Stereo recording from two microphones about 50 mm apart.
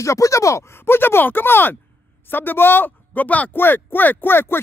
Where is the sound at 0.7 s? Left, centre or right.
Left.